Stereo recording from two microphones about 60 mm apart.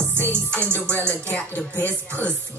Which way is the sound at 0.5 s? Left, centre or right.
Left.